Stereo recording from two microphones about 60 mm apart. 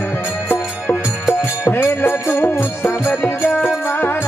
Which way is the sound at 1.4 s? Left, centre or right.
Left.